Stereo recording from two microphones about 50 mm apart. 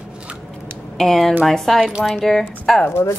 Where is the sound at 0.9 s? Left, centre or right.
Centre.